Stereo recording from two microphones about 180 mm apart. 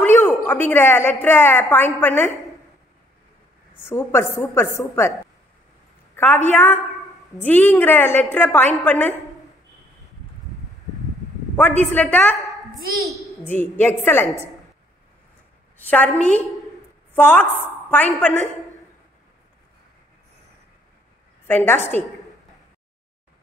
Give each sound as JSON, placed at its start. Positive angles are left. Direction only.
{"t": 0.0, "sound": "a woman's voice", "side_deg": 10}
{"t": 3.8, "sound": "a woman's voice", "side_deg": 15}
{"t": 6.1, "sound": "a woman's voice", "side_deg": 10}
{"t": 11.5, "sound": "a woman's voice", "side_deg": 10}
{"t": 13.4, "sound": "a woman's voice", "side_deg": 10}
{"t": 15.8, "sound": "a woman's voice", "side_deg": 10}
{"t": 21.5, "sound": "a woman's voice", "side_deg": 10}